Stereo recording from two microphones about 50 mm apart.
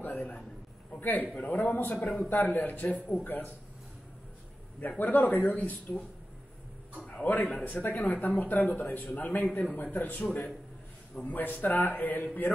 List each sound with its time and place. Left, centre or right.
0.0 s a sound: left
0.9 s a man's voice: left
4.7 s a man's voice: left
7.2 s a man's voice: left
11.2 s a man's voice: left